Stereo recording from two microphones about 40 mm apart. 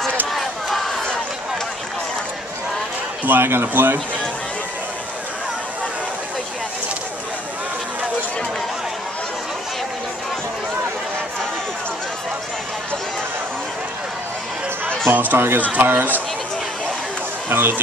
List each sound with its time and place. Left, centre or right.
0.3 s a sound: centre
3.3 s speech: right
3.6 s speech: right
14.9 s a sound: right
15.3 s speech: right
15.8 s speech: right
17.5 s speech: right